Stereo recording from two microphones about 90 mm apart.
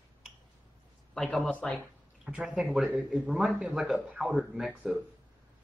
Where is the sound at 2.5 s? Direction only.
Centre (ahead or behind).